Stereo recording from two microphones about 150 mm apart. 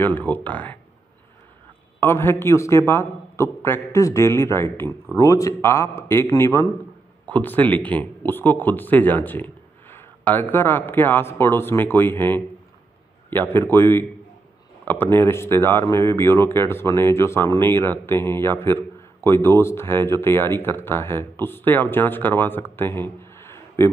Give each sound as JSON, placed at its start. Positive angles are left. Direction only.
{"t": 0.0, "sound": "speech", "side_deg": 10}
{"t": 2.0, "sound": "speech", "side_deg": 15}